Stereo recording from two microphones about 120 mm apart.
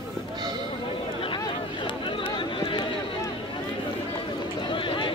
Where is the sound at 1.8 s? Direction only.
45° left (ahead or behind).